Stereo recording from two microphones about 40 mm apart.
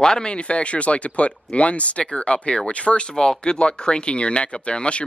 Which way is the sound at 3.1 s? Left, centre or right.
Centre.